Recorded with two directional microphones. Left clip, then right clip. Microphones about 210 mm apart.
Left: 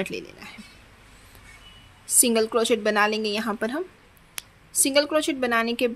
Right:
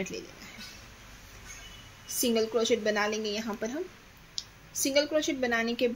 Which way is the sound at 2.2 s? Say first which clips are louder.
Left 5 dB; 30° left (ahead or behind).